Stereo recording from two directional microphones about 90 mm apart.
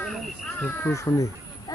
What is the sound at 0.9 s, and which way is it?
Speech, 35° left (ahead or behind).